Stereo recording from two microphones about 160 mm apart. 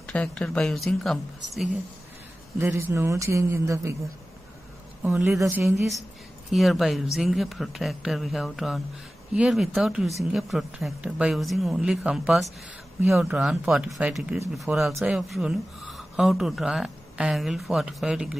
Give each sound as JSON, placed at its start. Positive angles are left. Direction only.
{"t": 0.0, "sound": "speech", "side_deg": 5}
{"t": 2.9, "sound": "speech", "side_deg": -20}
{"t": 5.4, "sound": "speech", "side_deg": -15}
{"t": 5.8, "sound": "a woman's voice", "side_deg": 45}
{"t": 6.5, "sound": "speech", "side_deg": 0}